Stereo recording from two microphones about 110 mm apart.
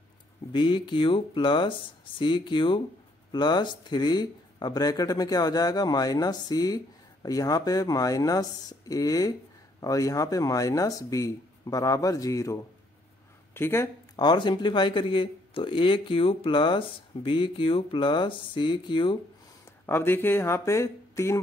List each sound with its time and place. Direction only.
0.5 s speech: 45° left (ahead or behind); by 12.5 s 30° left (ahead or behind)
13.6 s speech: 20° left (ahead or behind)
14.1 s speech: 40° left (ahead or behind)
19.9 s speech: 20° left (ahead or behind)